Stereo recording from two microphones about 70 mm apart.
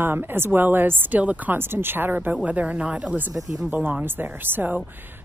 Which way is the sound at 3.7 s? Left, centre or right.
Right.